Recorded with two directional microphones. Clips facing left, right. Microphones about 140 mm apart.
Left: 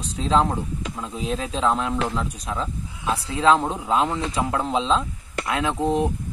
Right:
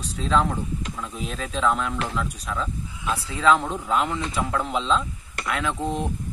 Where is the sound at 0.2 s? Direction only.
25° left (ahead or behind).